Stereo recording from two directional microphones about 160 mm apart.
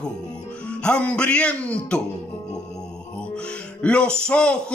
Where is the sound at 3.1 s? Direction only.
5° left (ahead or behind).